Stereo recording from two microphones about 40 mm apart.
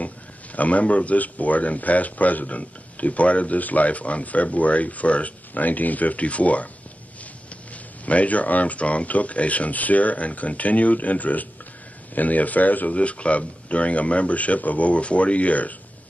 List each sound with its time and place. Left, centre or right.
0.6 s speech: left
8.0 s speech: left